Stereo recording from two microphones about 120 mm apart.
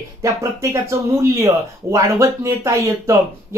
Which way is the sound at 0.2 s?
25° right (ahead or behind).